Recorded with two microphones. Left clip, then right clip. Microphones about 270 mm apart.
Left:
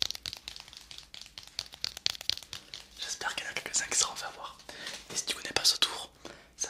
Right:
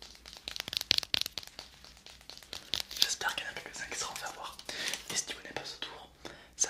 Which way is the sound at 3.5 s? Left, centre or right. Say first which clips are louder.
Left 7 dB; centre.